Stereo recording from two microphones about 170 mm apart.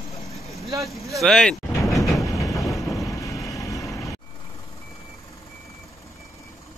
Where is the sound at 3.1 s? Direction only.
20° left (ahead or behind).